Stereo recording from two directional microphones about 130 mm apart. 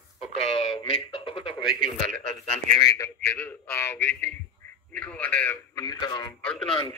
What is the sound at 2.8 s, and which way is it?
Speech, 25° left (ahead or behind).